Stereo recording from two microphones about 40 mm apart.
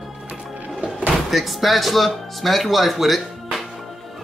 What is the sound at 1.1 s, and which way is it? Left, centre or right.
Speech, centre.